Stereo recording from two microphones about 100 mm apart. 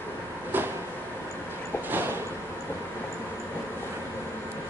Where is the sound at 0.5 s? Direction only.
20° right (ahead or behind).